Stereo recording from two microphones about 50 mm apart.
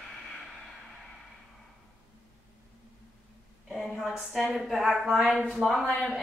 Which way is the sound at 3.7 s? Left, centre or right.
Centre.